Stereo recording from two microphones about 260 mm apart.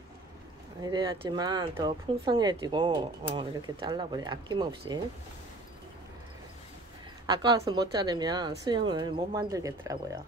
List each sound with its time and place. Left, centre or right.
0.8 s speech: centre
7.2 s speech: centre